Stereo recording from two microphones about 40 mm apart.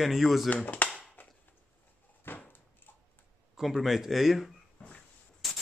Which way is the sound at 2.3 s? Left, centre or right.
Left.